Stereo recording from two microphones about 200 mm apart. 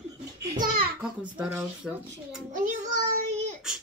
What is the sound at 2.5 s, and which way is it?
Child singing, 40° right (ahead or behind).